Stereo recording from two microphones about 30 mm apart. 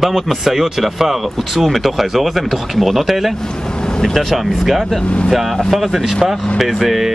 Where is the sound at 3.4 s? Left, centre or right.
Left.